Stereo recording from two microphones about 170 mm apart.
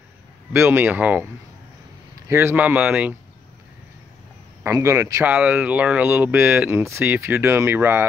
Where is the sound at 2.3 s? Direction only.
15° right (ahead or behind).